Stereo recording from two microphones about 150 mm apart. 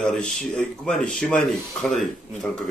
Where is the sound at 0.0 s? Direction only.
5° left (ahead or behind).